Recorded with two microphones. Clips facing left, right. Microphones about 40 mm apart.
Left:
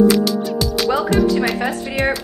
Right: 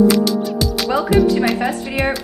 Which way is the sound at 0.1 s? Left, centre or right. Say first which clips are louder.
Right 1 dB; centre.